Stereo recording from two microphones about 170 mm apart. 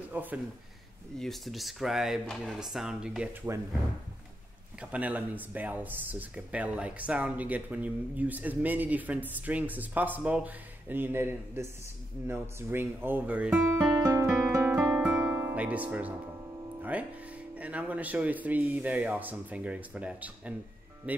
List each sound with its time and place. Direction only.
0.1 s speech: 10° right (ahead or behind)
1.2 s speech: centre (ahead or behind)
4.7 s speech: 10° right (ahead or behind)
14.0 s music: 15° right (ahead or behind)
14.3 s music: 5° right (ahead or behind)
16.9 s speech: 10° right (ahead or behind)